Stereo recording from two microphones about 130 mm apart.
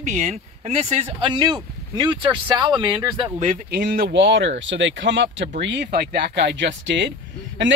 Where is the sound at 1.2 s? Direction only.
35° right (ahead or behind).